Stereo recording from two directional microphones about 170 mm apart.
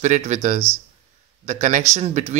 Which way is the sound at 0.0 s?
45° right (ahead or behind).